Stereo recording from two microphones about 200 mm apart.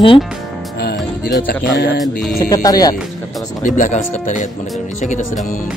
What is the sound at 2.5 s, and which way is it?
Speech, 20° left (ahead or behind).